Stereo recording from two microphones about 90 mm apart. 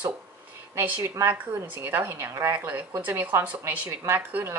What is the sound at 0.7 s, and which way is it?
A woman's voice, 25° right (ahead or behind).